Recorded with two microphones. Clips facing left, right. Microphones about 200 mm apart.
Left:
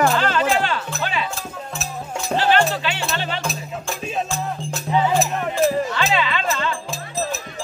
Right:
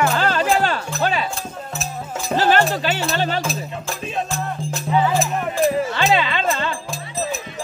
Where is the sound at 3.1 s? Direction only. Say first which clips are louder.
Right 5 dB; 40° right (ahead or behind).